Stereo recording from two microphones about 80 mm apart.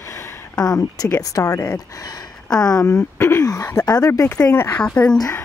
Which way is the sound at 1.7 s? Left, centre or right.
Left.